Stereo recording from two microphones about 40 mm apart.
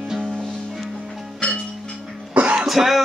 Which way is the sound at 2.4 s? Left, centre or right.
Right.